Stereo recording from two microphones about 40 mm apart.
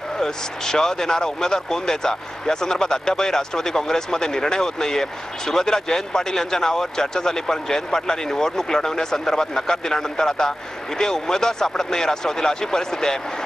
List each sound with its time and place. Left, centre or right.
0.2 s speech: centre